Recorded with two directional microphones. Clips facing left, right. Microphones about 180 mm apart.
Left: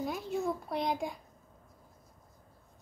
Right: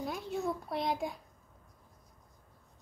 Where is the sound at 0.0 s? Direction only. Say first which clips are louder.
Left 2 dB; centre (ahead or behind).